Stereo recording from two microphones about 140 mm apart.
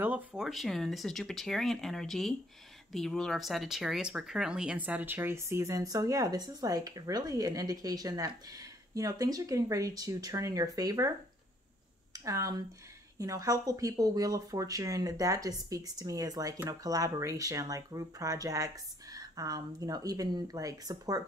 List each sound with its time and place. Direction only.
0.0 s speech: 10° right (ahead or behind)
12.1 s speech: 25° right (ahead or behind)